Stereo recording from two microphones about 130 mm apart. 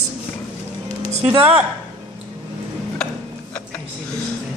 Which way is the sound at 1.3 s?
15° right (ahead or behind).